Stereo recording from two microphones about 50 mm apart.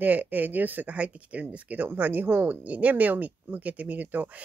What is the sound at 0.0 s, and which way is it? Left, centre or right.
Speech, right.